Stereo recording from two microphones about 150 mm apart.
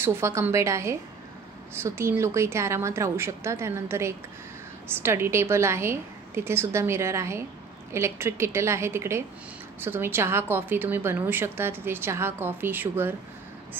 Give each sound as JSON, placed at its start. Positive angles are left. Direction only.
{"t": 0.0, "sound": "a woman's voice", "side_deg": -20}